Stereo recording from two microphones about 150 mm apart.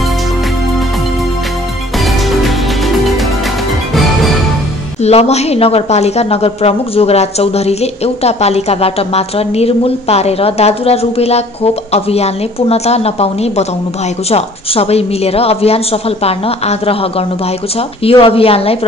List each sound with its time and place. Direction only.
2.0 s music: centre (ahead or behind)
5.0 s a woman's voice: 45° left (ahead or behind)